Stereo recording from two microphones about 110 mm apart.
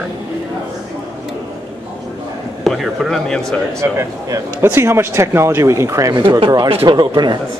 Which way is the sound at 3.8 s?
30° right (ahead or behind).